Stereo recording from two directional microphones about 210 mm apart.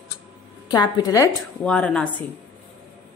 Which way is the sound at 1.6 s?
5° left (ahead or behind).